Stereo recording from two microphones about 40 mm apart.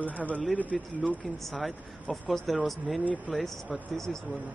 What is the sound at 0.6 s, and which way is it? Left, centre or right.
Speech, left.